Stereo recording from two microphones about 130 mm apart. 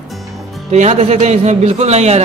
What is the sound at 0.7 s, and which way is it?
A man's voice, 60° right (ahead or behind).